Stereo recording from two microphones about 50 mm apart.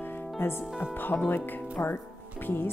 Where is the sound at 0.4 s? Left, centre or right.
Left.